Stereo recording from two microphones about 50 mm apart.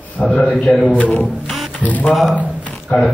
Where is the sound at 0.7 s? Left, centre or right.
Left.